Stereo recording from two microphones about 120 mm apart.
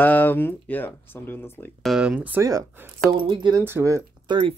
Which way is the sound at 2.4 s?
25° right (ahead or behind).